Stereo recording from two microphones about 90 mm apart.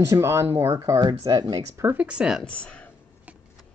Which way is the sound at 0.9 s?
45° right (ahead or behind).